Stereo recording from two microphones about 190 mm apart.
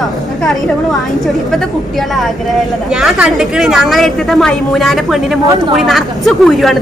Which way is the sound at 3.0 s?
5° right (ahead or behind).